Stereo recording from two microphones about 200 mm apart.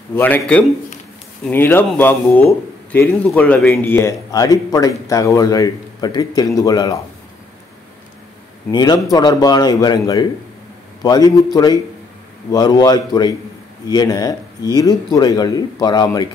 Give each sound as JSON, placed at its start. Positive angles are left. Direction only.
{"t": 0.1, "sound": "a man's voice", "side_deg": 10}
{"t": 8.7, "sound": "a man's voice", "side_deg": 20}